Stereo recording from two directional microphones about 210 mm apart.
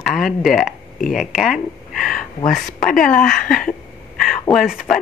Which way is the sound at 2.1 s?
40° left (ahead or behind).